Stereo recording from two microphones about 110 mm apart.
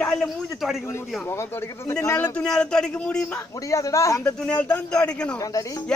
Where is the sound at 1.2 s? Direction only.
25° left (ahead or behind).